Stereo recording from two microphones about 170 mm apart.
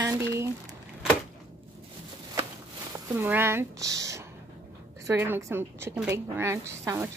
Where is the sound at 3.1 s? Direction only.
10° right (ahead or behind).